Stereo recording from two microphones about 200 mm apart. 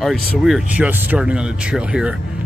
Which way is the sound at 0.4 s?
5° right (ahead or behind).